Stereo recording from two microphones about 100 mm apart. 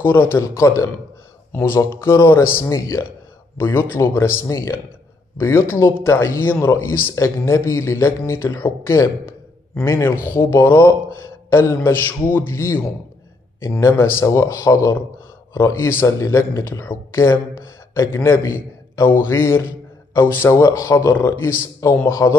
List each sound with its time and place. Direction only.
0.0 s a man's voice: 20° left (ahead or behind)